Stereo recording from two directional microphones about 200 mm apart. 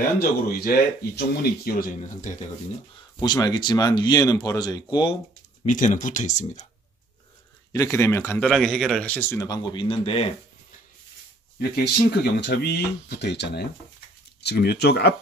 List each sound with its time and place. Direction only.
0.2 s speech: 50° left (ahead or behind)
3.2 s speech: 20° left (ahead or behind)
5.7 s speech: 40° left (ahead or behind)
7.7 s speech: 15° left (ahead or behind)
8.5 s speech: centre (ahead or behind); by 10.3 s 30° left (ahead or behind)
11.6 s speech: 50° left (ahead or behind)